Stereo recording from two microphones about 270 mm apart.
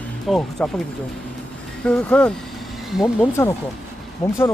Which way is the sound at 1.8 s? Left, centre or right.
Centre.